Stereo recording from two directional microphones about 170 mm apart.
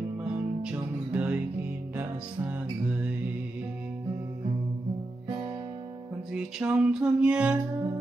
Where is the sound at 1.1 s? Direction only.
10° right (ahead or behind).